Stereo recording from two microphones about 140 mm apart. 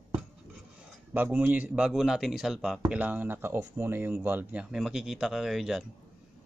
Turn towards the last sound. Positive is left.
turn(degrees=-5)  # may be behind; listen again after turning